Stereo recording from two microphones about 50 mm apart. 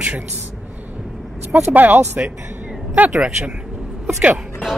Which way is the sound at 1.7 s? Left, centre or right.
Right.